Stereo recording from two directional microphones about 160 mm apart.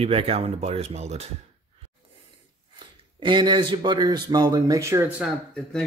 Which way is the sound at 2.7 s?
30° right (ahead or behind).